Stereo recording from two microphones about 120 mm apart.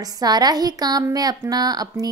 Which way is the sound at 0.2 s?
35° right (ahead or behind).